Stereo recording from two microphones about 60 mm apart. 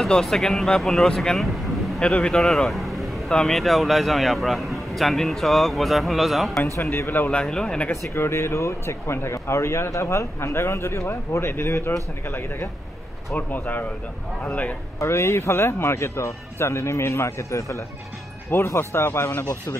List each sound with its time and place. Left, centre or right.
0.1 s speech: centre
2.0 s speech: centre
2.4 s vehicle: centre
3.3 s speech: centre
6.8 s speech: left
7.4 s speech: centre
7.9 s speech: left
13.5 s a man's voice: left
15.0 s speech: left
18.8 s speech: left